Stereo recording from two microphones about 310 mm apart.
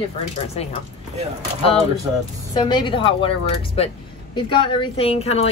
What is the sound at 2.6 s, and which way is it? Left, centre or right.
Speech, centre.